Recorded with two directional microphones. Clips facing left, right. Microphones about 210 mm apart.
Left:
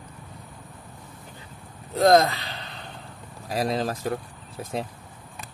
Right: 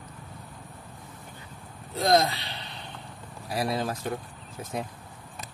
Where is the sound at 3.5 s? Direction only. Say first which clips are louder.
Left 3 dB; 35° left (ahead or behind).